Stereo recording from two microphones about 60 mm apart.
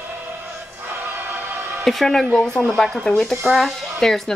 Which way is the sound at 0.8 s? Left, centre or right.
Right.